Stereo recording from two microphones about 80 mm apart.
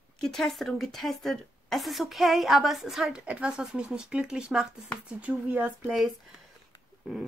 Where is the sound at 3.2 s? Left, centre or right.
Centre.